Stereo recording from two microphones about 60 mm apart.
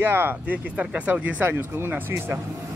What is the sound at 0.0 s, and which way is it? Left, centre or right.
Speech, right.